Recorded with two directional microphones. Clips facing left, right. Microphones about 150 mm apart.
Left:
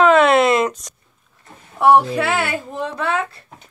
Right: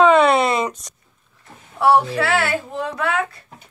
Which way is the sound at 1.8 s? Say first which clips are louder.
Left 2 dB; 20° left (ahead or behind).